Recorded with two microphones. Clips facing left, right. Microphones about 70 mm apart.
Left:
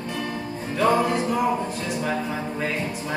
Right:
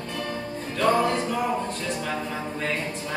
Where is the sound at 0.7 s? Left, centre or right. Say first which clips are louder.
Left 1 dB; centre.